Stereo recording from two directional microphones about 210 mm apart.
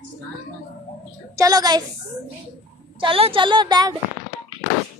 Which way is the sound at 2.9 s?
25° right (ahead or behind).